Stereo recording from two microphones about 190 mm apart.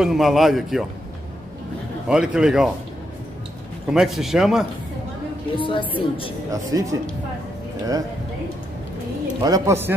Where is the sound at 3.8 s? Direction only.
Centre (ahead or behind).